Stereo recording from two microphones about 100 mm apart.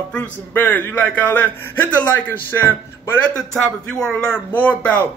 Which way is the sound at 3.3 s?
5° left (ahead or behind).